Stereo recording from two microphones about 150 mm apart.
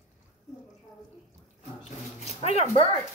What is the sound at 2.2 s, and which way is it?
Speech, 45° left (ahead or behind).